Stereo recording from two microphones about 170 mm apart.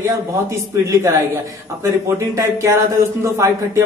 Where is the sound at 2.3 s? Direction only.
15° right (ahead or behind).